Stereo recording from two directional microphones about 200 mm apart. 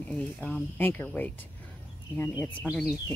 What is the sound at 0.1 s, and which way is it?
Speech, 5° left (ahead or behind).